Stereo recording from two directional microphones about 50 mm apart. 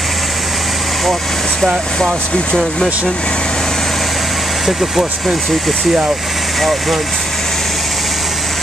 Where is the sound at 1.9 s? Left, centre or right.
Centre.